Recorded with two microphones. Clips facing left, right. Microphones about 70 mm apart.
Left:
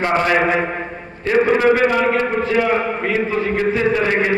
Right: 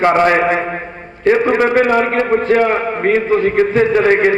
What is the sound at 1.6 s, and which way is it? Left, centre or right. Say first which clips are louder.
A man's voice: right 2 dB; right.